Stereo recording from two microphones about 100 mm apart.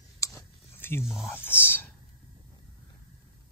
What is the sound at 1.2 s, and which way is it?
Speech, 20° left (ahead or behind).